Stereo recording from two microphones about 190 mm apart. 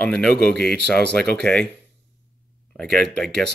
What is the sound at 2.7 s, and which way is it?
Speech, centre (ahead or behind).